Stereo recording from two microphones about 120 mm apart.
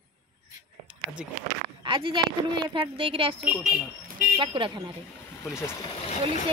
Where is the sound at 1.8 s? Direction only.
40° right (ahead or behind).